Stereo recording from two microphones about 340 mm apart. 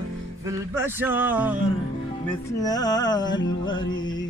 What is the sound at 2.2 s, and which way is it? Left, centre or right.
Speech, centre.